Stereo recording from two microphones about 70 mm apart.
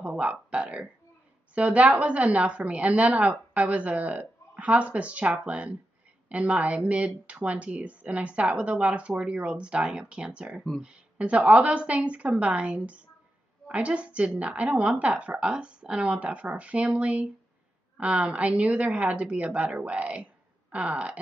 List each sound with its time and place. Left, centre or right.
0.0 s a woman's voice: centre